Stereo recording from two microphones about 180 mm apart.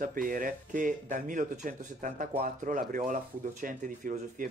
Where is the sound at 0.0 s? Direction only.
50° right (ahead or behind).